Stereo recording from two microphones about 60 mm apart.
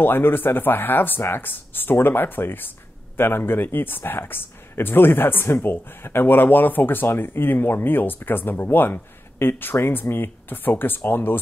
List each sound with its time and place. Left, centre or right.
0.0 s speech: left